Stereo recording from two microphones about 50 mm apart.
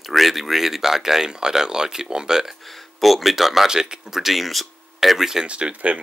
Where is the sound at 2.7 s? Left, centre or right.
Centre.